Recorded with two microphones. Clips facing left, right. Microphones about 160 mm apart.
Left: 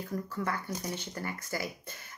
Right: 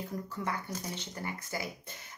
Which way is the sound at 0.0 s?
20° right (ahead or behind).